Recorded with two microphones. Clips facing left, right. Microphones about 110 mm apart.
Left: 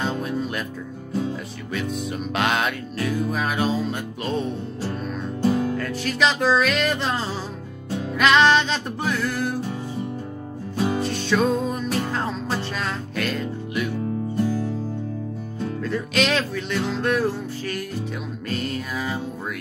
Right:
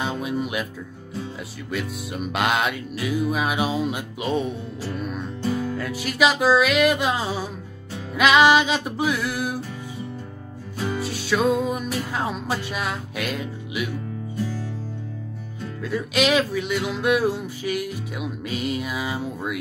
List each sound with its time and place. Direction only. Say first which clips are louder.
0.0 s music: even; 10° right (ahead or behind)
1.7 s music: left 2 dB; 5° right (ahead or behind)
5.8 s music: right 1 dB; 5° right (ahead or behind)
11.0 s music: right 1 dB; 5° right (ahead or behind)
14.3 s music: left 5 dB; 55° left (ahead or behind)
15.8 s music: right 2 dB; 5° right (ahead or behind)